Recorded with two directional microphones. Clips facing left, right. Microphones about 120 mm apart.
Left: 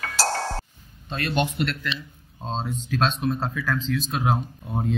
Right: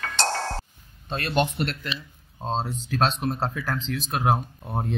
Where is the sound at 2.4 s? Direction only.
55° right (ahead or behind).